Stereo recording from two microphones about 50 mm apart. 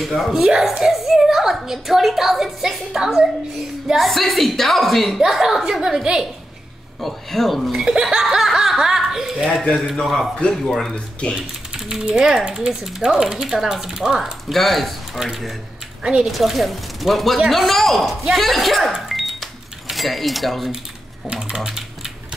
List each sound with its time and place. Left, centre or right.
0.0 s a woman's voice: centre
0.4 s a child's voice: centre
7.0 s a woman's voice: centre
7.8 s a woman's voice: centre
11.3 s speech: centre
14.5 s a woman's voice: centre
16.0 s a woman's voice: centre
16.3 s a woman's voice: centre
18.9 s cash register: centre
21.5 s typewriter: centre